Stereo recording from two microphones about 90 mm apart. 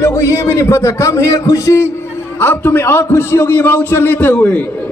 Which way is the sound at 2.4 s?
25° left (ahead or behind).